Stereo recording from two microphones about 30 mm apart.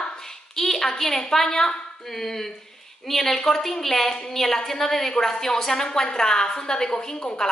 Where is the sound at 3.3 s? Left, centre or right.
Centre.